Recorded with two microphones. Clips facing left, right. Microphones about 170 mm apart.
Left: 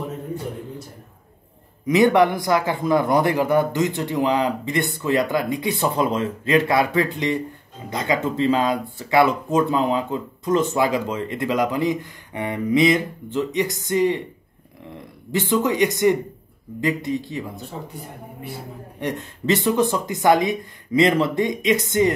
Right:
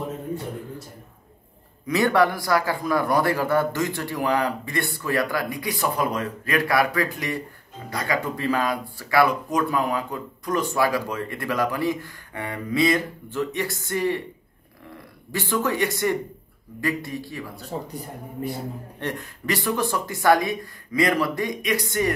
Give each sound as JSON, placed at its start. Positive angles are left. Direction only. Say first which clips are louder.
{"t": 1.9, "sound": "speech", "louder": "left 4 dB", "side_deg": 20}
{"t": 15.3, "sound": "speech", "louder": "left 4 dB", "side_deg": 20}
{"t": 18.9, "sound": "speech", "louder": "left 6 dB", "side_deg": 20}